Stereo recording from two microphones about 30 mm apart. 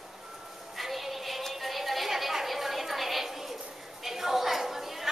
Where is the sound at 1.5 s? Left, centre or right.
Centre.